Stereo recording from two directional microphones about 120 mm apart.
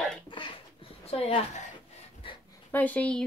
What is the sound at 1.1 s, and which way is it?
Speech, 55° left (ahead or behind).